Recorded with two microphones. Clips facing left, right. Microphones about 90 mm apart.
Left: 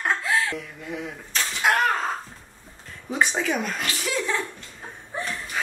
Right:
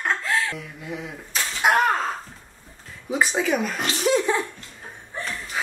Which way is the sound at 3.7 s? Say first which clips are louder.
Right 6 dB; 20° right (ahead or behind).